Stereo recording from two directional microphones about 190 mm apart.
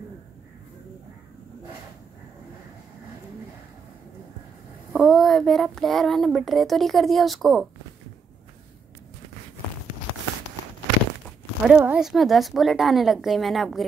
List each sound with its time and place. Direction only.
4.9 s speech: centre (ahead or behind)
11.6 s speech: 5° right (ahead or behind)